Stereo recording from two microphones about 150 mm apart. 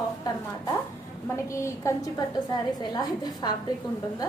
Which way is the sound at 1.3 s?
20° left (ahead or behind).